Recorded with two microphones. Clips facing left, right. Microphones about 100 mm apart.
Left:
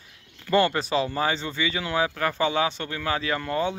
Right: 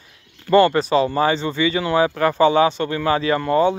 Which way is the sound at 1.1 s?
5° left (ahead or behind).